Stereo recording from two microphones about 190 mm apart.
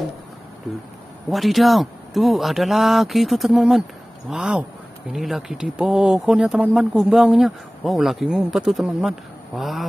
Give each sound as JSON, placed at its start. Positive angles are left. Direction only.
{"t": 1.3, "sound": "speech", "side_deg": 0}